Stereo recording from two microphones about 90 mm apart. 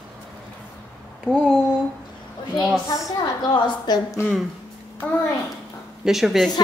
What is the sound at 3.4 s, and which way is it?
Speech, 50° left (ahead or behind).